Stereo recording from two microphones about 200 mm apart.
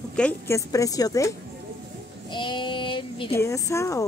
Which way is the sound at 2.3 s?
25° left (ahead or behind).